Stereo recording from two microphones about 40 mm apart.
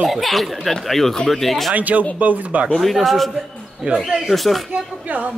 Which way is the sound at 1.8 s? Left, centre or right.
Right.